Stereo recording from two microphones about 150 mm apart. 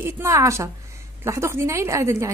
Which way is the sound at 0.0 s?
20° right (ahead or behind).